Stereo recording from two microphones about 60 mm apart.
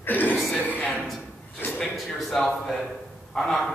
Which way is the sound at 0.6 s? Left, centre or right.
Left.